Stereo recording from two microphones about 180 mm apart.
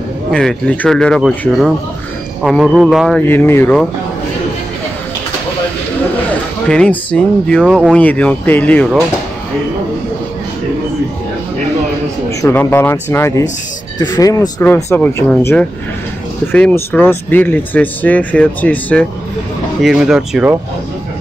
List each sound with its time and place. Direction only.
0.3 s speech: 5° left (ahead or behind)
3.2 s speech: 10° left (ahead or behind)
6.7 s speech: 5° left (ahead or behind)
7.6 s speech: 5° right (ahead or behind)
7.9 s speech: 5° left (ahead or behind)
12.4 s speech: 15° left (ahead or behind)
19.8 s speech: centre (ahead or behind)